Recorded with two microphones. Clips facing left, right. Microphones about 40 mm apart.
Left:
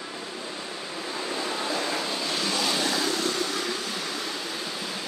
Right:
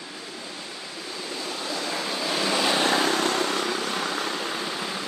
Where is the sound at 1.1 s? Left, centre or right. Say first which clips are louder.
Left 3 dB; centre.